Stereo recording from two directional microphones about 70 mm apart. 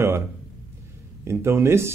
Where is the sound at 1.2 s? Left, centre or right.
Right.